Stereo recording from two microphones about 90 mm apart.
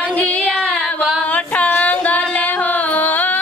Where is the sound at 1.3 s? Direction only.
15° left (ahead or behind).